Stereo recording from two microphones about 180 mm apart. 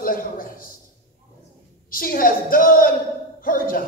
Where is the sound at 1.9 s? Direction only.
55° left (ahead or behind).